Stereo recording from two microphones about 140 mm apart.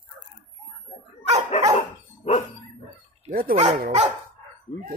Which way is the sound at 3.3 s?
90° right.